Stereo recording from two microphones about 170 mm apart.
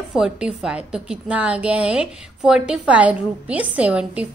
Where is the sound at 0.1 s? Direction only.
5° right (ahead or behind).